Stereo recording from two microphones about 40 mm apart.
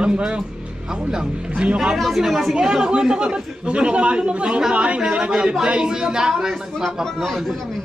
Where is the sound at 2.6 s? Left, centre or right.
Right.